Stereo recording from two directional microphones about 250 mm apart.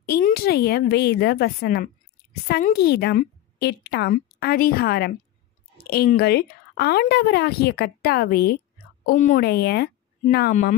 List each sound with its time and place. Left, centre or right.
0.0 s speech: left